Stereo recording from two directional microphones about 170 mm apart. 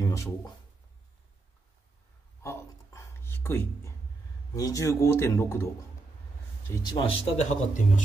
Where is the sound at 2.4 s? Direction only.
15° left (ahead or behind).